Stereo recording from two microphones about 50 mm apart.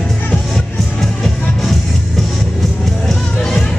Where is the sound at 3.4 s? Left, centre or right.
Centre.